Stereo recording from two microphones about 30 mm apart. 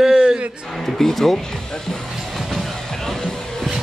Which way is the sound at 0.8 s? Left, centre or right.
Centre.